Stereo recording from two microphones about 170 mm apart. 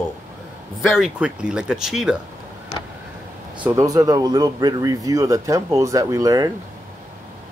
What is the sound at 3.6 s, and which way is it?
Speech, 20° right (ahead or behind).